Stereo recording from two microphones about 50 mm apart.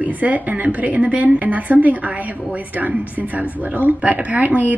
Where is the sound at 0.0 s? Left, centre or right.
Right.